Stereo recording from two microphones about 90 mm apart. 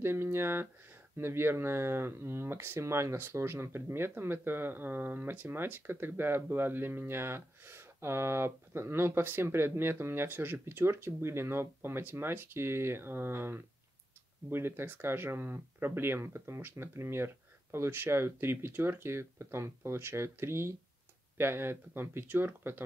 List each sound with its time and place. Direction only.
0.0 s speech: 25° right (ahead or behind)